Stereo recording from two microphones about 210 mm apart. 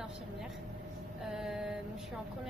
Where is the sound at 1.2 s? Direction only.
Centre (ahead or behind).